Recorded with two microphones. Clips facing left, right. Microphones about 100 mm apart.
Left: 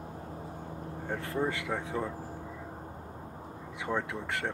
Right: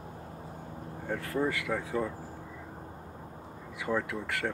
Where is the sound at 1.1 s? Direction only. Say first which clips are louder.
Right 1 dB; 25° left (ahead or behind).